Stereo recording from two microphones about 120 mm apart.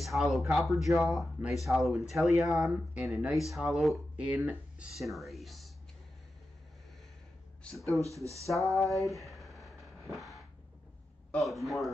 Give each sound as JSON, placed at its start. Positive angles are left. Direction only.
{"t": 0.0, "sound": "speech", "side_deg": 0}
{"t": 8.0, "sound": "speech", "side_deg": -25}
{"t": 8.7, "sound": "a sound", "side_deg": 0}
{"t": 11.3, "sound": "speech", "side_deg": 0}